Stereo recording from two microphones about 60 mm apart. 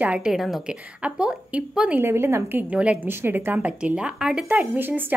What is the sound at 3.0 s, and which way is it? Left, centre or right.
Speech, right.